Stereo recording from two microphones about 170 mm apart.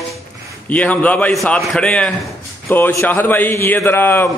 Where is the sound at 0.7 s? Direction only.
10° left (ahead or behind).